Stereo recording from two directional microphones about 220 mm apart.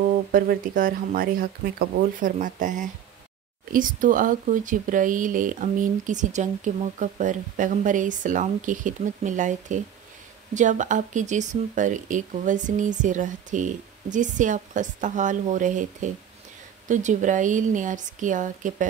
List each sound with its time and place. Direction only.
0.3 s speech: 40° right (ahead or behind)